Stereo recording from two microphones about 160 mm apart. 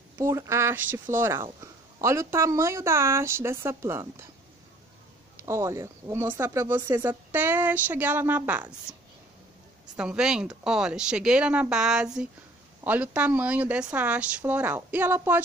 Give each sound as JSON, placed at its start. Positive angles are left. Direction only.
{"t": 0.2, "sound": "speech", "side_deg": -20}
{"t": 5.4, "sound": "speech", "side_deg": -15}
{"t": 9.9, "sound": "speech", "side_deg": -5}